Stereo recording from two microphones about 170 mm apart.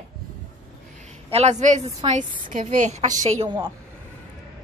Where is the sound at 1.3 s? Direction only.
40° right (ahead or behind).